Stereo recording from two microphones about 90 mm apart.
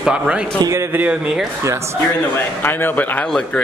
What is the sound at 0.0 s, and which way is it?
Speech, 10° right (ahead or behind).